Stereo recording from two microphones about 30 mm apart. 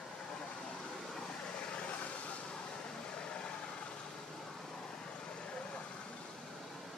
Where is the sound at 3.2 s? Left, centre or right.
Left.